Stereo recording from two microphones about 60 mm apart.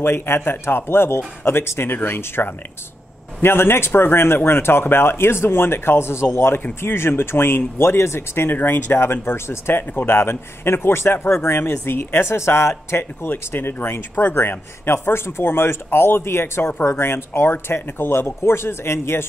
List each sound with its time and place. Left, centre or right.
0.0 s speech: left
8.5 s speech: left